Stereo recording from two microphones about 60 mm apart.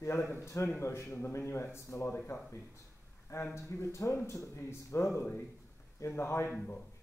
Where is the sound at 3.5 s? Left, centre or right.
Left.